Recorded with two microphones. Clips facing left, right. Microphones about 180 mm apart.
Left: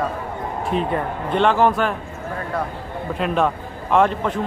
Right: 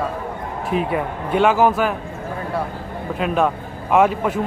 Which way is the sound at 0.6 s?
5° right (ahead or behind).